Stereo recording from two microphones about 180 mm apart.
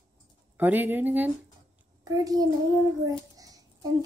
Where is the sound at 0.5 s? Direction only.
10° right (ahead or behind).